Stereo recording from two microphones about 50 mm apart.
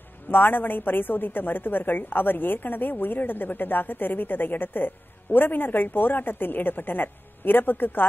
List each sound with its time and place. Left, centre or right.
0.3 s a woman's voice: left